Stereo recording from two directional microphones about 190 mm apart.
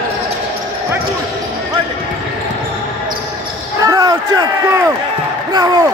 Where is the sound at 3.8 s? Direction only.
20° right (ahead or behind).